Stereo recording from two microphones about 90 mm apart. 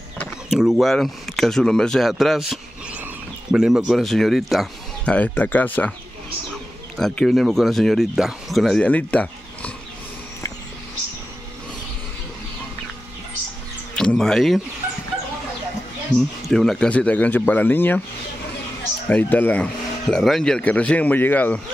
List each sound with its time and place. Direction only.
0.5 s speech: 5° right (ahead or behind)
5.0 s speech: 15° left (ahead or behind)
7.0 s speech: centre (ahead or behind)
8.8 s speech: 15° left (ahead or behind)
13.9 s speech: 5° left (ahead or behind)
16.2 s speech: 5° left (ahead or behind); by 17.9 s 20° left (ahead or behind)
19.0 s speech: 20° left (ahead or behind)